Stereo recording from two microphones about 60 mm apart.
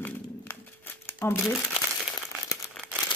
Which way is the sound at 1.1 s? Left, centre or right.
Left.